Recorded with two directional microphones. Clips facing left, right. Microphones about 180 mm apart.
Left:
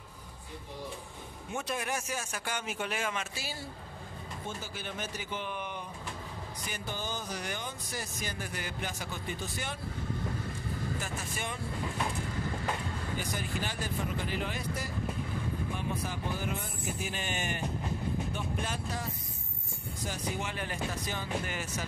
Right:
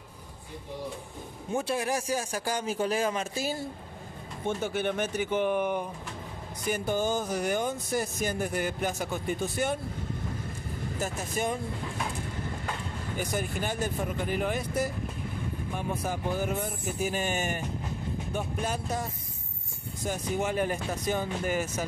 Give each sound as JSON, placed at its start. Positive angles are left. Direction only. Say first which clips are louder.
{"t": 1.5, "sound": "a man's voice", "louder": "right 6 dB", "side_deg": -30}
{"t": 4.5, "sound": "speech", "louder": "right 13 dB", "side_deg": -65}
{"t": 11.0, "sound": "a man's voice", "louder": "right 7 dB", "side_deg": -40}
{"t": 13.2, "sound": "speech", "louder": "right 8 dB", "side_deg": -50}
{"t": 15.9, "sound": "speech", "louder": "right 5 dB", "side_deg": -45}
{"t": 20.1, "sound": "speech", "louder": "right 7 dB", "side_deg": -45}